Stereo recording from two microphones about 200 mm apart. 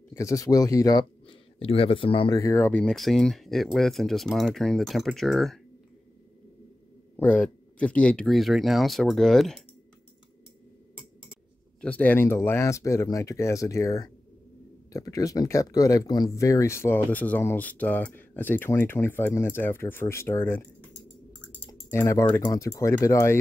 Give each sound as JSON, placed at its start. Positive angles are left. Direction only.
{"t": 0.1, "sound": "speech", "side_deg": 15}
{"t": 7.2, "sound": "speech", "side_deg": 5}
{"t": 11.8, "sound": "speech", "side_deg": 5}